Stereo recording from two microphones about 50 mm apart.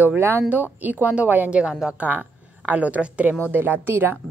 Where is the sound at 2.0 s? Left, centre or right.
Right.